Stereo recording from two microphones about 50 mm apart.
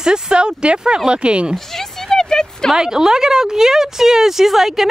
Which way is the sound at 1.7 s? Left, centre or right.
Centre.